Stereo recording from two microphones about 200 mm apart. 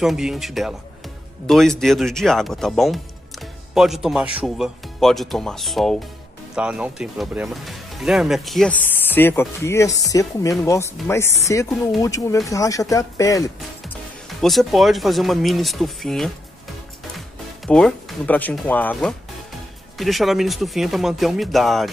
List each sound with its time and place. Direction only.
0.0 s speech: centre (ahead or behind); by 13.9 s 15° left (ahead or behind)
14.4 s speech: centre (ahead or behind)
17.6 s speech: 5° left (ahead or behind)